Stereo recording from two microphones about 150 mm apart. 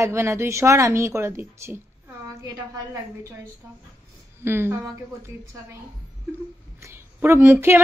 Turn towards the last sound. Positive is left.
turn(degrees=-15)  # may be behind; listen again after turning